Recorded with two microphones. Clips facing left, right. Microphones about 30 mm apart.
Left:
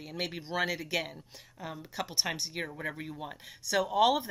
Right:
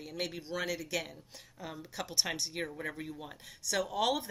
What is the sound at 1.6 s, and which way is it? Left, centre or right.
Speech, centre.